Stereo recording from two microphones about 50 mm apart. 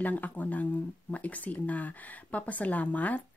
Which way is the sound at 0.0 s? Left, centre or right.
Left.